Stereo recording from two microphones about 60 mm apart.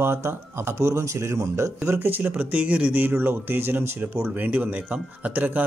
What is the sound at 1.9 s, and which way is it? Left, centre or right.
Speech, right.